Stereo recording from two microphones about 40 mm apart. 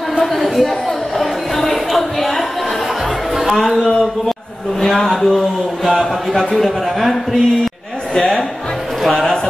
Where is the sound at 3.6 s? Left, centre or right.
Centre.